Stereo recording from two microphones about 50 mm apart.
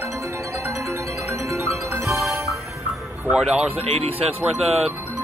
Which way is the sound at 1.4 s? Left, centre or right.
Right.